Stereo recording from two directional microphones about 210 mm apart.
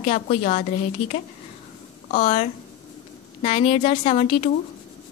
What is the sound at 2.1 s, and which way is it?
A woman's voice, 35° left (ahead or behind).